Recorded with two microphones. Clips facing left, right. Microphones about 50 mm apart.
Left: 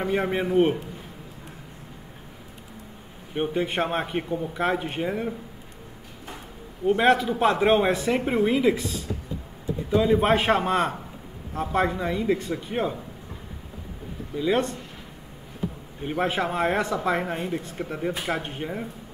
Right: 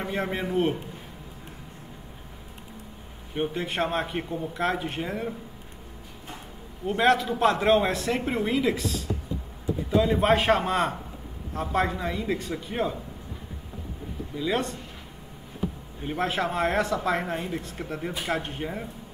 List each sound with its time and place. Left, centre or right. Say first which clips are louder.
0.1 s a man's voice: left 5 dB; centre
3.3 s a man's voice: left 3 dB; centre
6.9 s a man's voice: left 2 dB; centre
14.3 s a man's voice: left 4 dB; centre
16.1 s a man's voice: left 2 dB; centre